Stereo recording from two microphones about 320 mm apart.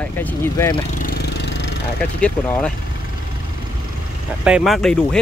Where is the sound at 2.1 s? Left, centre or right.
Centre.